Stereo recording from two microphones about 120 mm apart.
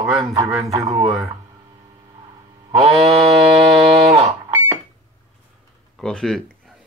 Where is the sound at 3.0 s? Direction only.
55° right (ahead or behind).